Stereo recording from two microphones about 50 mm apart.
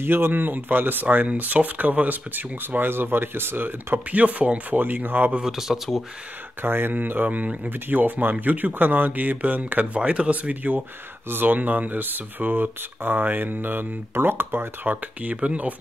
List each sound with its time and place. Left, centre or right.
0.0 s speech: right
5.4 s speech: centre
6.6 s speech: right
6.9 s speech: right
15.2 s speech: right